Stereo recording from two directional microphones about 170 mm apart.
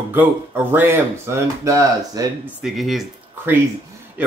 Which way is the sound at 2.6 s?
Centre (ahead or behind).